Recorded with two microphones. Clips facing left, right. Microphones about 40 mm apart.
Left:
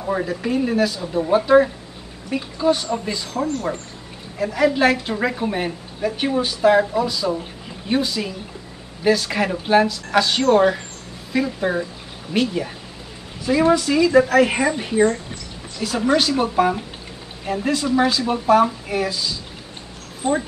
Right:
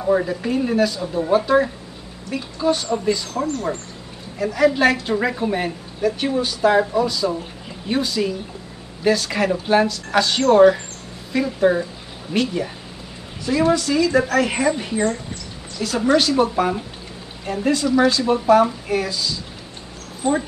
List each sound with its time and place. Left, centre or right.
0.0 s speech: centre
6.1 s speech: centre
6.7 s speech: centre
20.2 s speech: centre